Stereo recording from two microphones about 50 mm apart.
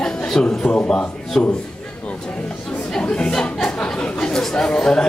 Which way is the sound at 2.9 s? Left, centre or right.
Centre.